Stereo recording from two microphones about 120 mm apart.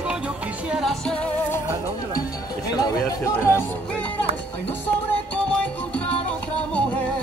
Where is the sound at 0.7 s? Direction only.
Centre (ahead or behind).